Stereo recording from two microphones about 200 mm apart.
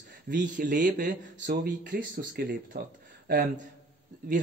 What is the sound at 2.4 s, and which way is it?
Speech, 50° right (ahead or behind).